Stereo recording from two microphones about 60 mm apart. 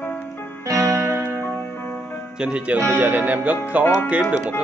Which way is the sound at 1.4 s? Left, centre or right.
Left.